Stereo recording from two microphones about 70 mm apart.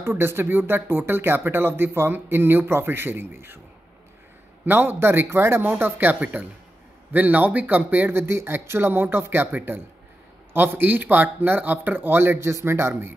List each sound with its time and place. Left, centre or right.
0.0 s speech: right
4.6 s speech: right
8.2 s speech: right